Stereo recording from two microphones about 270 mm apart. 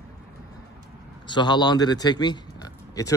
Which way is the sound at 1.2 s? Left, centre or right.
Centre.